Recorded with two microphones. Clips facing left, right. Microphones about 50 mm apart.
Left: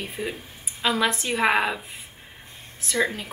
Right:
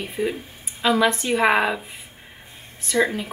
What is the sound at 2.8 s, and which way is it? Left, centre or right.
Speech, centre.